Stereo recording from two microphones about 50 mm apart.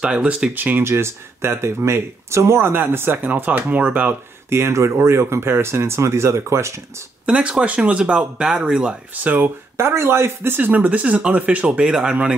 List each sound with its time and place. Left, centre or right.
0.0 s speech: centre
0.6 s speech: right
0.8 s speech: right
4.5 s speech: right
7.2 s speech: centre
9.1 s speech: right
9.8 s speech: right
10.7 s speech: right